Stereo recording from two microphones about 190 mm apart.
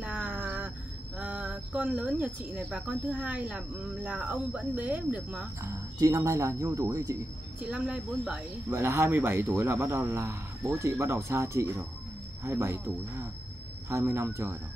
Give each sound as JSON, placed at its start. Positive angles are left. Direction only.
{"t": 0.0, "sound": "a sound", "side_deg": -5}
{"t": 1.1, "sound": "speech", "side_deg": -5}
{"t": 7.7, "sound": "speech", "side_deg": 0}
{"t": 8.6, "sound": "speech", "side_deg": -15}